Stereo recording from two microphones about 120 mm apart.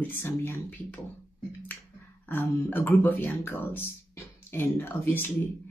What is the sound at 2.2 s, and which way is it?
Speech, 15° left (ahead or behind).